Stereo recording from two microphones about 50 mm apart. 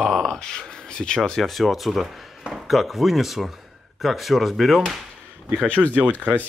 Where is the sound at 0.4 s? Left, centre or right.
Centre.